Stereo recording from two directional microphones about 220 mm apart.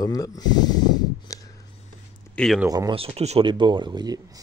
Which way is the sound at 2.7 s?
20° right (ahead or behind).